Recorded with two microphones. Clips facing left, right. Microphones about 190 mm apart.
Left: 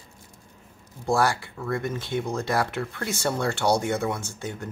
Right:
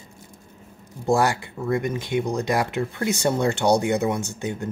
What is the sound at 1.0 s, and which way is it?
Speech, 20° right (ahead or behind).